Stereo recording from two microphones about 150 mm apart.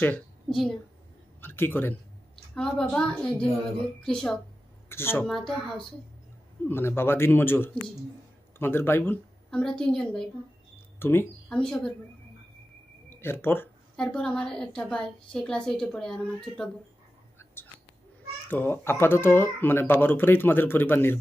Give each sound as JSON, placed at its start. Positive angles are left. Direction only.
{"t": 0.0, "sound": "a woman's voice", "side_deg": 5}
{"t": 1.4, "sound": "a woman's voice", "side_deg": 15}
{"t": 4.8, "sound": "a woman's voice", "side_deg": 15}
{"t": 5.3, "sound": "a woman's voice", "side_deg": 0}
{"t": 6.7, "sound": "a woman's voice", "side_deg": 15}
{"t": 11.0, "sound": "speech", "side_deg": 15}
{"t": 11.4, "sound": "a woman's voice", "side_deg": 5}
{"t": 13.1, "sound": "a sound", "side_deg": 15}
{"t": 14.0, "sound": "a woman's voice", "side_deg": 5}
{"t": 18.5, "sound": "speech", "side_deg": 15}